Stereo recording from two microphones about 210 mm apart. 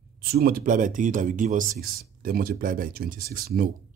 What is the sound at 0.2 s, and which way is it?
Speech, 45° right (ahead or behind).